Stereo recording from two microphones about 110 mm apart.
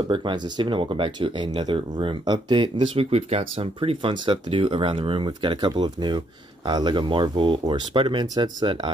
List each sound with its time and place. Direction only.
0.1 s speech: 50° right (ahead or behind)
3.1 s speech: 70° right (ahead or behind); by 8.9 s 45° right (ahead or behind)